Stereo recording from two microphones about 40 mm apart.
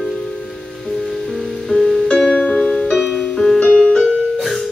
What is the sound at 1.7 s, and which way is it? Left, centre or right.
Music, centre.